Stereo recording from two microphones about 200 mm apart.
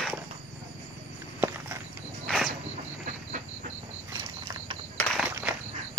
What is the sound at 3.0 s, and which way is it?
Train, 35° right (ahead or behind).